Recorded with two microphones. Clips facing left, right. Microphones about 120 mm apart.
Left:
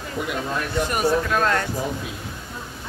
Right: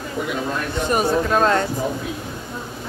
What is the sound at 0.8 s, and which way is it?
Speech, 30° right (ahead or behind).